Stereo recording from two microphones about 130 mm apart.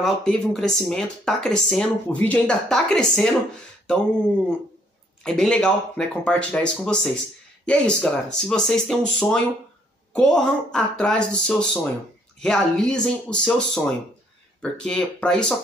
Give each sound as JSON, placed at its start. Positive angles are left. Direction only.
{"t": 0.0, "sound": "speech", "side_deg": 5}
{"t": 5.2, "sound": "speech", "side_deg": 5}